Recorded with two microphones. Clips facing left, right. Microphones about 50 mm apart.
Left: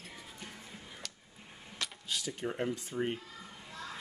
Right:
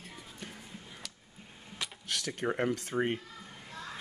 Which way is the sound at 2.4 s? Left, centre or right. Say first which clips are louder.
Right 5 dB; right.